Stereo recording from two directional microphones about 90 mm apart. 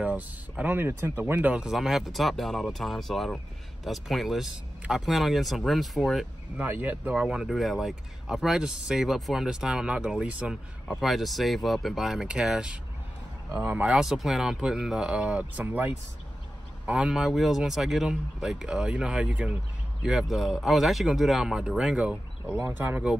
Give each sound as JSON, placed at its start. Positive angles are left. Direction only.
{"t": 0.0, "sound": "speech", "side_deg": -15}
{"t": 6.5, "sound": "speech", "side_deg": -20}
{"t": 11.0, "sound": "speech", "side_deg": 0}
{"t": 13.9, "sound": "speech", "side_deg": -5}
{"t": 20.0, "sound": "speech", "side_deg": -5}